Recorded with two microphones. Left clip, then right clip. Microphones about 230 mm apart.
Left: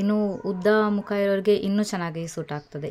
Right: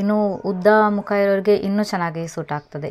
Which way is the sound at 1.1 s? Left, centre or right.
Centre.